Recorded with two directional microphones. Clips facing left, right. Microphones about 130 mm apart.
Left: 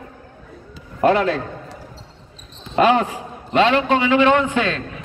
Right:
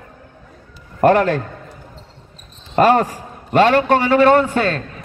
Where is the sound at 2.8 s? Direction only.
40° right (ahead or behind).